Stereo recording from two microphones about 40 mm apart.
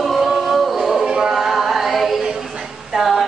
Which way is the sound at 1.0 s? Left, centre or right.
Centre.